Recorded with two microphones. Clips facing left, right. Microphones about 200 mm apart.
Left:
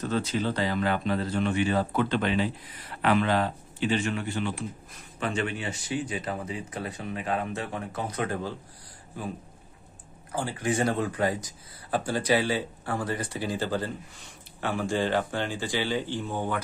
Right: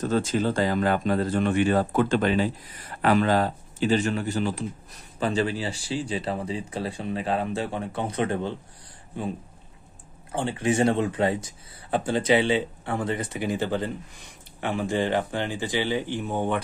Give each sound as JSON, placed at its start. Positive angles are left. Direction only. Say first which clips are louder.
{"t": 0.0, "sound": "a man's voice", "louder": "right 4 dB", "side_deg": -45}
{"t": 10.3, "sound": "speech", "louder": "right 4 dB", "side_deg": -25}